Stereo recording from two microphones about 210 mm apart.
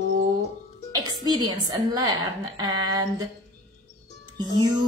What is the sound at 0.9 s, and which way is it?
A woman's voice, 20° right (ahead or behind).